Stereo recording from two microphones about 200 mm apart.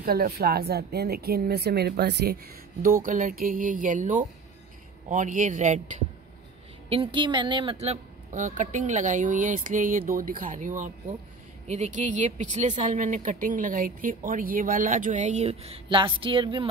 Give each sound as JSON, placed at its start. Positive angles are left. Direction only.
{"t": 0.0, "sound": "speech", "side_deg": -50}
{"t": 2.8, "sound": "speech", "side_deg": -45}
{"t": 7.8, "sound": "speech", "side_deg": -35}